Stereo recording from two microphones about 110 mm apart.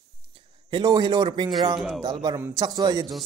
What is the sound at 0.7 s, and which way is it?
Speech, 45° right (ahead or behind).